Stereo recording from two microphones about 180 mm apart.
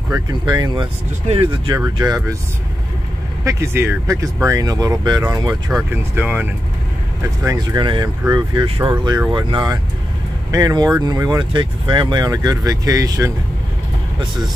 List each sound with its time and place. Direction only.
0.1 s speech: 20° right (ahead or behind)
3.4 s speech: 15° right (ahead or behind)
5.9 s speech: 10° right (ahead or behind)
7.4 s speech: 25° right (ahead or behind)